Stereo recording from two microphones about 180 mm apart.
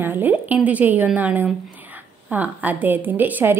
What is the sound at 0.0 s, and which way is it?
A woman's voice, 10° right (ahead or behind).